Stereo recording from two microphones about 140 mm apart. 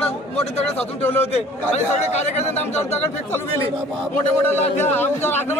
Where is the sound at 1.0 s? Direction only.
15° left (ahead or behind).